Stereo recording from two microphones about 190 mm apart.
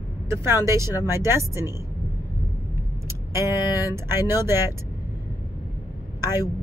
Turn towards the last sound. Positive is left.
turn(degrees=-15)  # may be behind; listen again after turning